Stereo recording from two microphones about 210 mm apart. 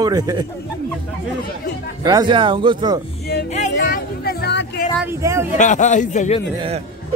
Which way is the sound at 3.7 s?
45° left (ahead or behind).